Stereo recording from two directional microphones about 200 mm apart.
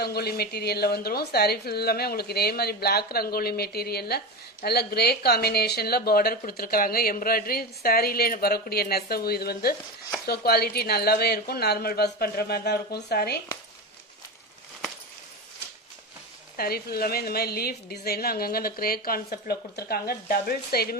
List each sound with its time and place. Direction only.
0.0 s speech: 50° left (ahead or behind)
16.5 s speech: 50° left (ahead or behind)